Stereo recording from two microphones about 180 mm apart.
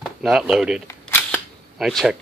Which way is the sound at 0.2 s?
5° right (ahead or behind).